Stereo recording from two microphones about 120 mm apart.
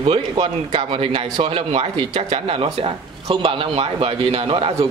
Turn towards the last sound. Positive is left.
turn(degrees=-50)  # may be behind; listen again after turning